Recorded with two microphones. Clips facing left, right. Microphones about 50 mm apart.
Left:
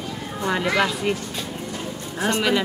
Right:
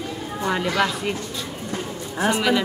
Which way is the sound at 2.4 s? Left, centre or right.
Centre.